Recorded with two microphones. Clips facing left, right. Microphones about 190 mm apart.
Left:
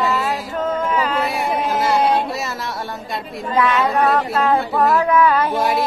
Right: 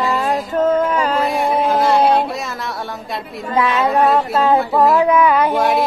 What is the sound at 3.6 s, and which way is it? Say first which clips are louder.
Speech: even; 30° right (ahead or behind).